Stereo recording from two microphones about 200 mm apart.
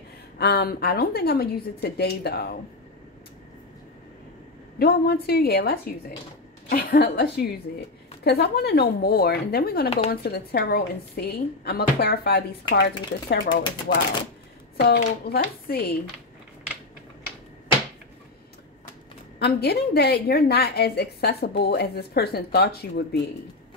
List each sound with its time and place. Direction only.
0.4 s a woman's voice: 50° left (ahead or behind)
4.7 s a woman's voice: 50° left (ahead or behind)
19.3 s a woman's voice: 50° left (ahead or behind)